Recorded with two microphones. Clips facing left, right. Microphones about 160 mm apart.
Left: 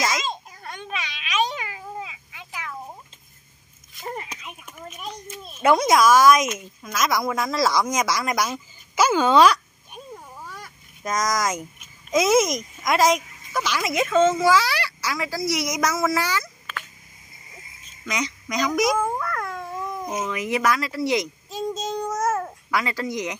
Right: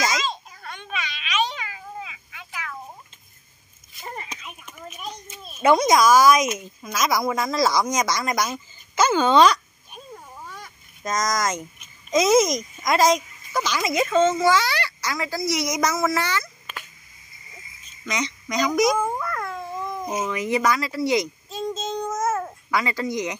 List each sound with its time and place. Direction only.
1.6 s cat: 20° left (ahead or behind)
3.9 s a sound: 5° left (ahead or behind)
5.6 s speech: 5° left (ahead or behind)
18.0 s speech: 5° left (ahead or behind)
19.5 s cat: 10° right (ahead or behind)
20.1 s speech: 5° right (ahead or behind)
21.5 s a child's voice: 10° left (ahead or behind)